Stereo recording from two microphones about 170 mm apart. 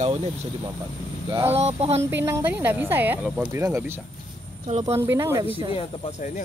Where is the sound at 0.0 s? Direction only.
35° right (ahead or behind).